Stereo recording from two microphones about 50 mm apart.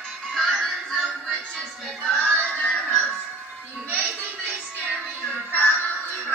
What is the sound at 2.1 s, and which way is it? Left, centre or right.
Music, left.